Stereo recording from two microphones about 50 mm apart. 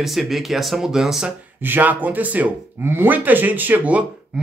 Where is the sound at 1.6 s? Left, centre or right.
Right.